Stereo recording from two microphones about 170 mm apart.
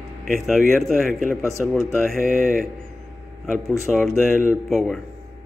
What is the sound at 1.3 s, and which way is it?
Speech, 20° left (ahead or behind).